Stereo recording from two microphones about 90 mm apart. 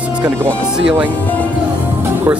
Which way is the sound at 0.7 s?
15° right (ahead or behind).